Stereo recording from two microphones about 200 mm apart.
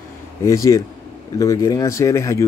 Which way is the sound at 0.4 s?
15° left (ahead or behind).